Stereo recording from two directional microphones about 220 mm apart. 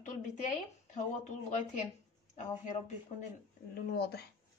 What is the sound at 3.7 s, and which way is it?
Speech, 45° left (ahead or behind).